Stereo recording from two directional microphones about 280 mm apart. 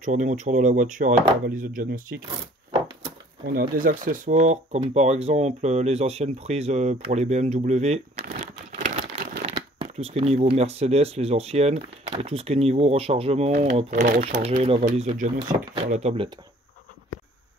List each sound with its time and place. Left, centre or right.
0.0 s speech: right
3.4 s speech: right